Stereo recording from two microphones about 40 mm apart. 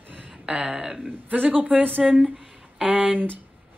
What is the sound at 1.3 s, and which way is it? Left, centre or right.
A woman's voice, right.